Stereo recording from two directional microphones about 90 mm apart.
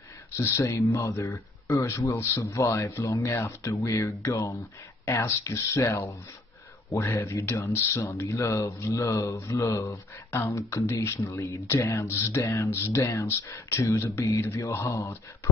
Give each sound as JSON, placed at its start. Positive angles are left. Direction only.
{"t": 0.4, "sound": "speech", "side_deg": 30}